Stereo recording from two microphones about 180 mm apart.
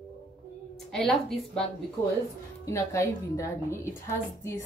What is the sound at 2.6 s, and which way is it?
A woman's voice, 15° left (ahead or behind).